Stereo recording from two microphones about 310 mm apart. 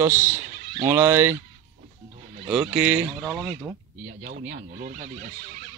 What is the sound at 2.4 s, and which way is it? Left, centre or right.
Speech, centre.